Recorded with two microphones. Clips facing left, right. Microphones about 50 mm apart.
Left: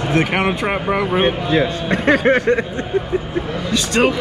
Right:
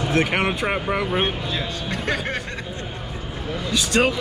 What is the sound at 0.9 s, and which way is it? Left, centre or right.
Speech, centre.